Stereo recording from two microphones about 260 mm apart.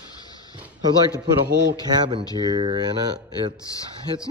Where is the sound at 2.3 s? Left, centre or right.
Centre.